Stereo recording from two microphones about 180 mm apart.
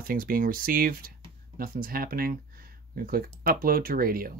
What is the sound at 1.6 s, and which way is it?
Speech, 55° right (ahead or behind).